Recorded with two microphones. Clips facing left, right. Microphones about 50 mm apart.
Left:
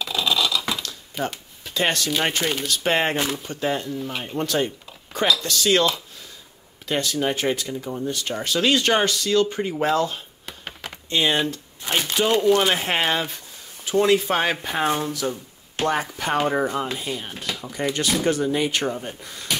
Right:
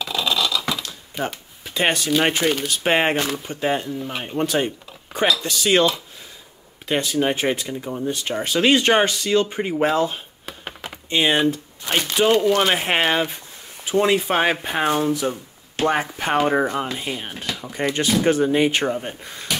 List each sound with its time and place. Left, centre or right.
0.0 s a sound: centre
1.2 s speech: centre
1.6 s a sound: right
2.2 s speech: centre
4.4 s speech: right
6.9 s speech: right
10.4 s computer keyboard: centre
11.1 s speech: right
17.7 s speech: right